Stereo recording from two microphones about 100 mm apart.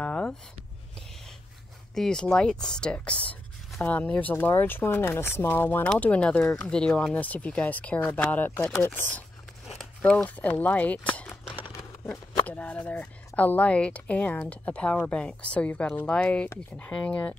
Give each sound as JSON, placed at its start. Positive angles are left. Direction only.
{"t": 0.0, "sound": "a sound", "side_deg": 10}
{"t": 2.0, "sound": "speech", "side_deg": 5}
{"t": 12.4, "sound": "speech", "side_deg": 15}